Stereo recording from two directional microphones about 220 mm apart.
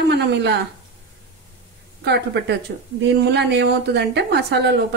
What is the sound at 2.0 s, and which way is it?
Speech, 50° right (ahead or behind).